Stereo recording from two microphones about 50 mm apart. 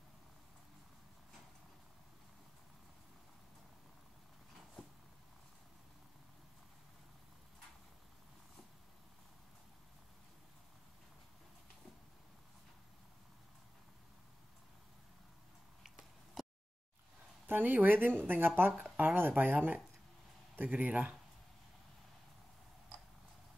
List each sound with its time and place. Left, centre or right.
15.8 s a sound: centre
17.5 s speech: right
18.7 s speech: right